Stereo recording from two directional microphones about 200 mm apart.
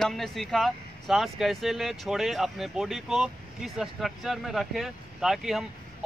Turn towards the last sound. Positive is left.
turn(degrees=0)  # may be behind; listen again after turning